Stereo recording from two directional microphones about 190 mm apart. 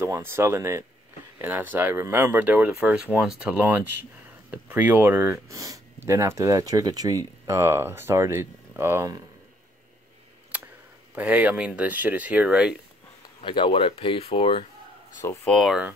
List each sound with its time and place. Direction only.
0.0 s speech: 15° right (ahead or behind)
11.1 s speech: 5° right (ahead or behind)
13.4 s speech: 25° left (ahead or behind)
15.2 s speech: 15° left (ahead or behind)
15.5 s speech: centre (ahead or behind)